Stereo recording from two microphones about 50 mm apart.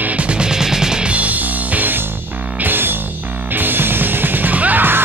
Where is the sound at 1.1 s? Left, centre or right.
Right.